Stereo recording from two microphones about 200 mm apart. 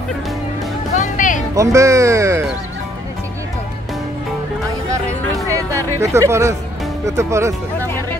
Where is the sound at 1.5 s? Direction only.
15° right (ahead or behind).